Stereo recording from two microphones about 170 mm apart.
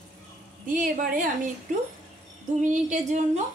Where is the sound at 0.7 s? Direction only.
55° right (ahead or behind).